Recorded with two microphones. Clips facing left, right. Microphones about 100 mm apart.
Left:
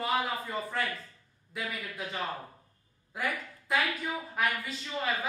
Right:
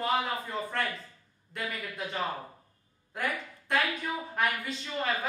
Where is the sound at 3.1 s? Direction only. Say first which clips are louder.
Right 1 dB; centre (ahead or behind).